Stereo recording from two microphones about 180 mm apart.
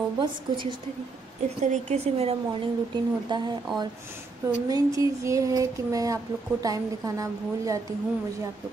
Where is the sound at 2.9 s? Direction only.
25° right (ahead or behind).